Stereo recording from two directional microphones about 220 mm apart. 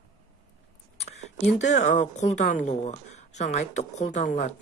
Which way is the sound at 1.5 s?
30° left (ahead or behind).